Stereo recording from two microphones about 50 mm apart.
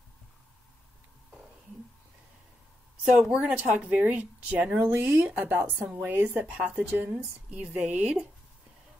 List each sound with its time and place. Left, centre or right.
3.3 s a woman's voice: right
6.9 s a woman's voice: right
7.7 s speech: right